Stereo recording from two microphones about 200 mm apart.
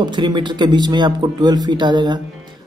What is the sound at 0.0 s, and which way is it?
Speech, 20° right (ahead or behind).